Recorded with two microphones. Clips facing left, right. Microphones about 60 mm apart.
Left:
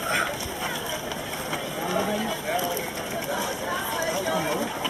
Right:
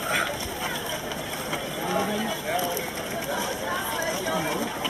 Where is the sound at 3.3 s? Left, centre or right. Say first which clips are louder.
Even; centre.